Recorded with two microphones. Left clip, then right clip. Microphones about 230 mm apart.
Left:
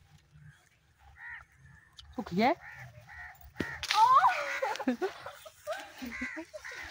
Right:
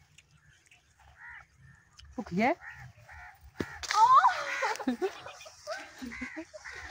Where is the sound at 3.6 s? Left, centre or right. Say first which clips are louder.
Right 1 dB; left.